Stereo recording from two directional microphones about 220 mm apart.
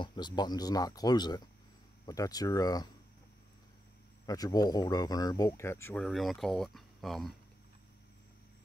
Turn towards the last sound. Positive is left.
turn(degrees=0)  # may be behind; listen again after turning